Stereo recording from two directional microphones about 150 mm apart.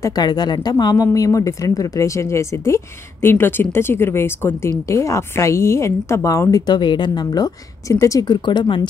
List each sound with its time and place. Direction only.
0.0 s a woman's voice: 25° left (ahead or behind)